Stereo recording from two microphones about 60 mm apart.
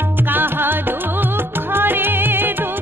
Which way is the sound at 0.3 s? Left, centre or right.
Right.